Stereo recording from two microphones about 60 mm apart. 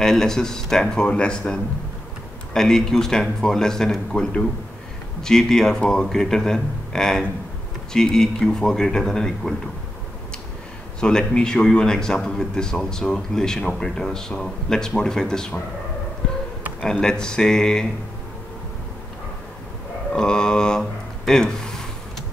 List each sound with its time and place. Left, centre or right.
0.0 s a man's voice: centre
11.0 s speech: centre
16.8 s speech: centre
20.1 s a sound: centre
21.3 s speech: centre